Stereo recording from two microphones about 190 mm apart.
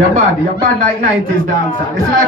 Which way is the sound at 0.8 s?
40° right (ahead or behind).